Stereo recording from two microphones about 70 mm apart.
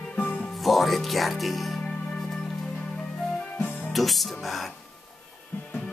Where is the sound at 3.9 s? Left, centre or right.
Centre.